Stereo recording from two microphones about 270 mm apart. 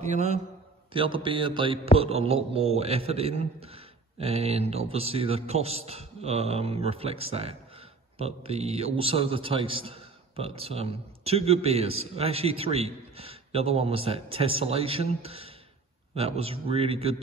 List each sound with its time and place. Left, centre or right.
0.0 s a man's voice: right